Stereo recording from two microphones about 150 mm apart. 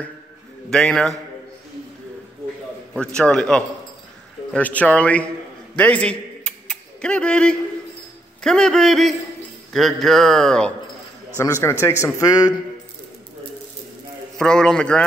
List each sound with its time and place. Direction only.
0.7 s speech: 5° left (ahead or behind)
3.2 s a man's voice: 5° left (ahead or behind)
5.8 s a sound: 10° left (ahead or behind)
8.4 s speech: 5° left (ahead or behind)
11.4 s a man's voice: 15° left (ahead or behind)
14.4 s speech: 5° left (ahead or behind)